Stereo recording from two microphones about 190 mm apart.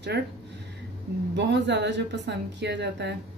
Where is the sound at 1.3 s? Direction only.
65° right (ahead or behind).